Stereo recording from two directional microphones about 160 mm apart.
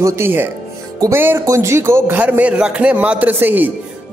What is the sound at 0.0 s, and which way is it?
A man's voice, 15° right (ahead or behind).